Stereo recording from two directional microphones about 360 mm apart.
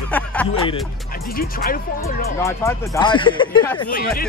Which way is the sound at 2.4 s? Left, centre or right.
Centre.